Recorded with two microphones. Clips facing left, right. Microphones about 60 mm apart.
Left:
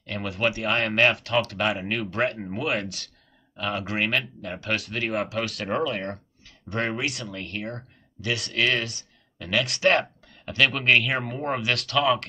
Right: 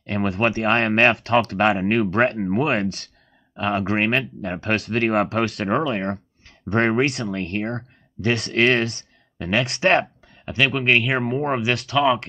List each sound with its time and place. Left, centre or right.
0.0 s speech: right
1.5 s speech: right
4.7 s speech: right
5.7 s speech: right
7.1 s speech: right
7.3 s speech: right
10.2 s speech: right
11.7 s speech: centre